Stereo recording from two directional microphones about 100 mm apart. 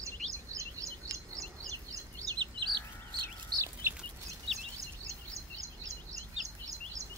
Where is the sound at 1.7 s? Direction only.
35° right (ahead or behind).